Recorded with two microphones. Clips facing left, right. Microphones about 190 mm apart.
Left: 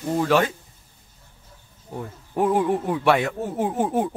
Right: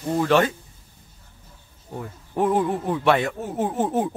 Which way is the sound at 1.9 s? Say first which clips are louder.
Left 1 dB; 10° left (ahead or behind).